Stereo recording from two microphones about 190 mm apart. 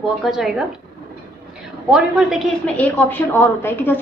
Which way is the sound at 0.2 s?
Centre (ahead or behind).